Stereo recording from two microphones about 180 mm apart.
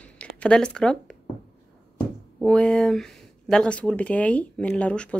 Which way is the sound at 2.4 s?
5° left (ahead or behind).